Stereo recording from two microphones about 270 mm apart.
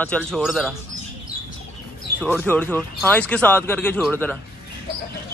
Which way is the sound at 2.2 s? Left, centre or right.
Centre.